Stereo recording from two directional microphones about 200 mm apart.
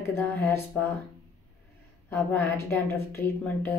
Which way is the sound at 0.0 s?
10° left (ahead or behind).